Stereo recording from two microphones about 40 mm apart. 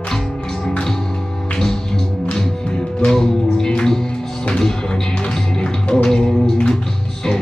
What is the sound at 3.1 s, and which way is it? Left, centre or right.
Music, centre.